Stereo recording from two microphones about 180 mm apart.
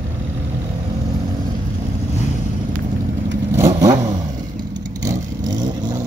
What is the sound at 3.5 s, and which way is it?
Vehicle, 15° right (ahead or behind).